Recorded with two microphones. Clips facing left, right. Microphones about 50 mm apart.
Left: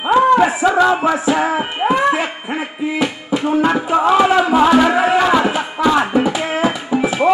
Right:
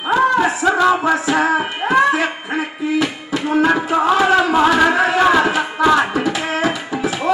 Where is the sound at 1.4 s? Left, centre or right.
Centre.